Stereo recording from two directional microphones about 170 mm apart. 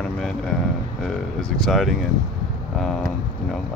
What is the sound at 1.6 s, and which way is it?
Speech, centre (ahead or behind).